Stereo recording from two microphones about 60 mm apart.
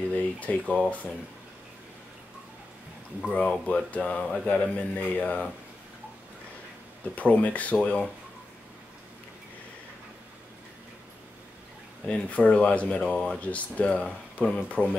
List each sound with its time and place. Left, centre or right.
0.1 s speech: left
3.3 s speech: left
7.2 s speech: left
12.1 s speech: left
13.4 s speech: left